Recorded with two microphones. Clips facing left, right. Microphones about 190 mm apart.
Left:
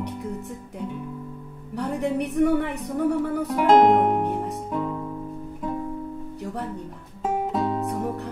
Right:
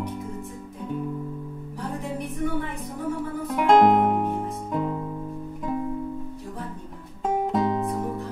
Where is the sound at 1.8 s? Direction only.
70° left (ahead or behind).